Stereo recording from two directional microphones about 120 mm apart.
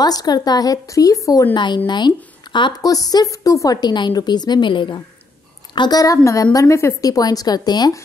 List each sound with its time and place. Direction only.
0.0 s a woman's voice: 35° left (ahead or behind)
1.5 s a woman's voice: 40° left (ahead or behind)